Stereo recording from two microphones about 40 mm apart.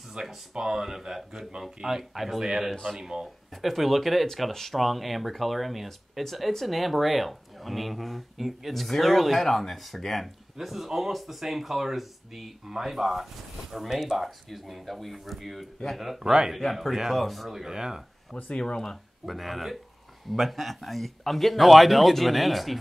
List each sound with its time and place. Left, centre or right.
0.3 s speech: centre
2.7 s speech: centre
3.0 s speech: centre
3.6 s speech: centre
16.5 s speech: centre
17.5 s speech: centre
18.3 s speech: left
19.2 s speech: centre